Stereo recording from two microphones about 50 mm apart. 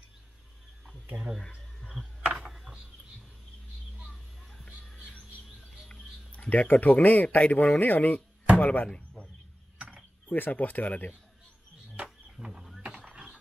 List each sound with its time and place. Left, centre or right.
1.0 s speech: right
5.1 s bird: left
6.3 s speech: left
8.9 s a sound: left
9.8 s mechanisms: right
10.2 s speech: left
12.8 s a sound: right